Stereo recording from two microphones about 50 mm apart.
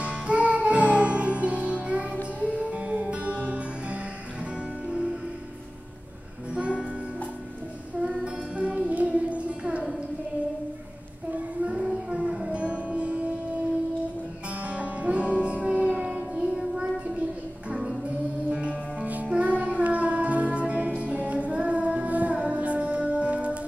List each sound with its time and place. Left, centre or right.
0.0 s music: right
6.5 s music: right
8.5 s music: right
12.1 s music: right
14.6 s music: right
18.5 s music: right